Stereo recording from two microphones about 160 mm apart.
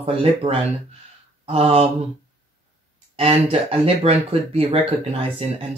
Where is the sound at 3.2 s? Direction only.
35° right (ahead or behind).